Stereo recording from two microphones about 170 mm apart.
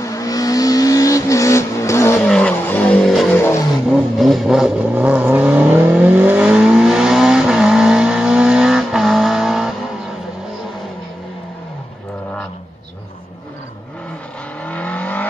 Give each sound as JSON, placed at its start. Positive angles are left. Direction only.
{"t": 0.0, "sound": "vehicle", "side_deg": 20}
{"t": 2.2, "sound": "vehicle", "side_deg": 5}
{"t": 3.3, "sound": "vehicle", "side_deg": 15}
{"t": 3.9, "sound": "vehicle", "side_deg": 0}
{"t": 14.6, "sound": "vehicle", "side_deg": 10}